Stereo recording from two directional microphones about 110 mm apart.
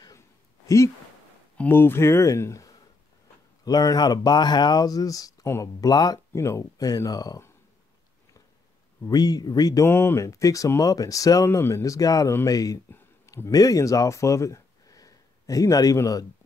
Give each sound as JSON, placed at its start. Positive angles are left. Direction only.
{"t": 1.6, "sound": "speech", "side_deg": 20}
{"t": 9.1, "sound": "speech", "side_deg": 35}
{"t": 9.8, "sound": "speech", "side_deg": 20}